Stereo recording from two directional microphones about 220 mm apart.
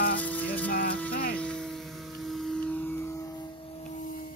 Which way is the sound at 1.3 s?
5° left (ahead or behind).